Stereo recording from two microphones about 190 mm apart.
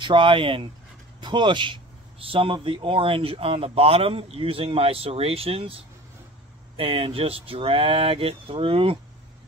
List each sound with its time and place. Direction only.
0.0 s speech: 25° right (ahead or behind)